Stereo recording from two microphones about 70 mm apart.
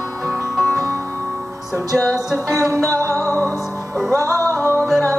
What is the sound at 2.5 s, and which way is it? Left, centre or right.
Music, right.